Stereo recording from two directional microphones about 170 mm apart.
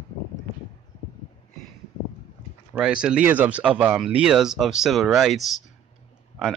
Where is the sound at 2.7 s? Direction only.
5° right (ahead or behind).